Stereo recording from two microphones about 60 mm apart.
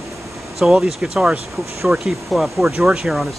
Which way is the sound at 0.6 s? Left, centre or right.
Centre.